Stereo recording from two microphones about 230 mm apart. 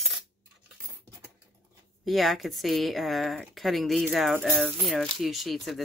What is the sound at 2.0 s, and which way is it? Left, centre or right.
Speech, centre.